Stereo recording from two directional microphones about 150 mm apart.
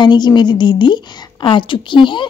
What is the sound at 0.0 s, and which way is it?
A woman's voice, 30° left (ahead or behind).